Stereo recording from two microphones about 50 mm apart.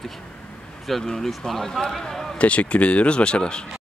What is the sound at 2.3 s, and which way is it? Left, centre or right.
Speech, left.